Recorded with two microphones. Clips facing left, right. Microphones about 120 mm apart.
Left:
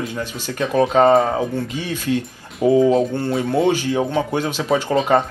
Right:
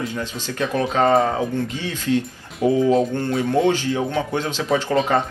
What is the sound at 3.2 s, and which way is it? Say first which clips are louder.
Speech: left 1 dB; 10° left (ahead or behind).